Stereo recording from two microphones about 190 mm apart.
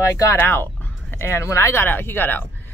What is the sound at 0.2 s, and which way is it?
A woman's voice, 10° left (ahead or behind).